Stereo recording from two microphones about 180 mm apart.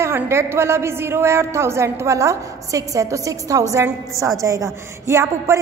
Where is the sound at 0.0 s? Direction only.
15° right (ahead or behind).